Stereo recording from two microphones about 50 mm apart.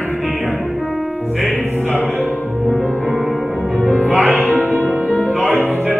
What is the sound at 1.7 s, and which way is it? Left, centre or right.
Music, right.